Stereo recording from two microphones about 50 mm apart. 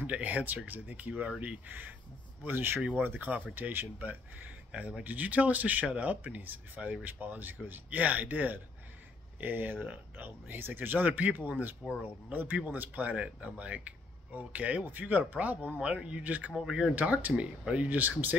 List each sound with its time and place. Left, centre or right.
0.0 s speech: right
13.1 s speech: right
16.5 s speech: centre
16.9 s speech: right
17.8 s speech: right